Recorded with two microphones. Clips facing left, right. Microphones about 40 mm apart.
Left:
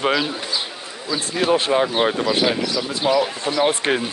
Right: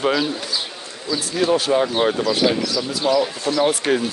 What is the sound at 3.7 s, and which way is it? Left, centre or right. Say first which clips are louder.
Speech: right 1 dB; left.